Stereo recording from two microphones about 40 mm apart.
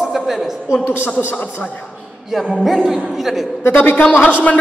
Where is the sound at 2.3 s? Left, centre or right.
Centre.